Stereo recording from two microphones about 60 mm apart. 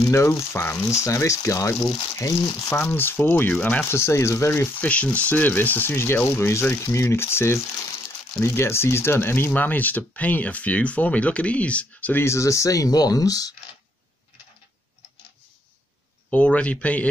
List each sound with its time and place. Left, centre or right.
0.0 s speech: left
2.7 s speech: left
4.7 s speech: left
6.5 s speech: left
12.2 s speech: left
16.3 s speech: left